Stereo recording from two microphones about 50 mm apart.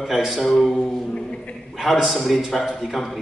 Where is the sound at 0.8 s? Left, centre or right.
Centre.